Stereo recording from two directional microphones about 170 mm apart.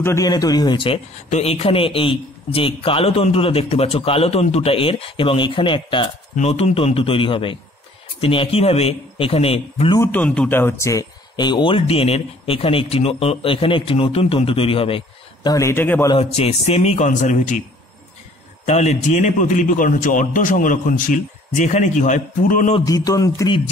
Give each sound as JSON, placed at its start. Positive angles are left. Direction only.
{"t": 0.0, "sound": "a man's voice", "side_deg": 20}
{"t": 1.3, "sound": "speech", "side_deg": 40}
{"t": 9.9, "sound": "speech", "side_deg": 10}
{"t": 16.1, "sound": "speech", "side_deg": 35}
{"t": 18.7, "sound": "a man's voice", "side_deg": 40}
{"t": 22.8, "sound": "a man's voice", "side_deg": 20}